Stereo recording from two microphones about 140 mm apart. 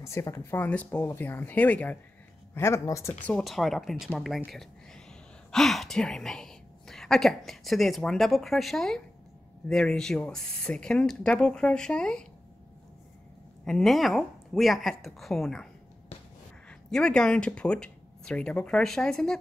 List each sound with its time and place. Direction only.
0.0 s speech: 20° left (ahead or behind)
3.3 s a woman's voice: 5° left (ahead or behind)
13.7 s speech: centre (ahead or behind)
16.9 s speech: 5° left (ahead or behind)